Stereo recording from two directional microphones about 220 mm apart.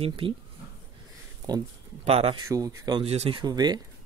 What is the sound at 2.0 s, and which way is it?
Speech, 25° right (ahead or behind).